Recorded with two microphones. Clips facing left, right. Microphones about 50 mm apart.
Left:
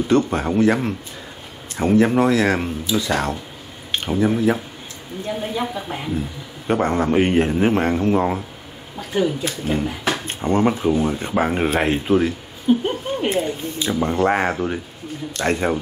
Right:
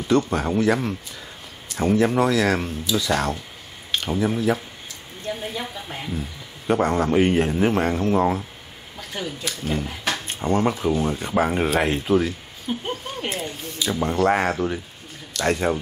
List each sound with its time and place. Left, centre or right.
0.1 s a woman's voice: left
5.2 s a woman's voice: centre
6.7 s speech: left
9.7 s speech: centre
10.2 s speech: left
13.3 s speech: left
14.3 s a woman's voice: centre